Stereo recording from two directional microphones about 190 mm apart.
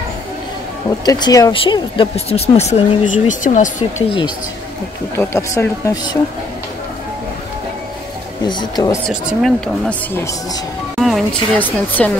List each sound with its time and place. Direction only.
0.8 s speech: 20° left (ahead or behind); by 3.7 s 40° left (ahead or behind)
5.1 s speech: 15° left (ahead or behind)
8.5 s speech: 20° left (ahead or behind)
9.0 s speech: centre (ahead or behind)
11.0 s speech: centre (ahead or behind)